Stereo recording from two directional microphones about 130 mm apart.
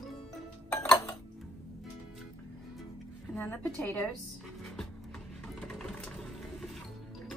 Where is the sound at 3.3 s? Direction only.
10° left (ahead or behind).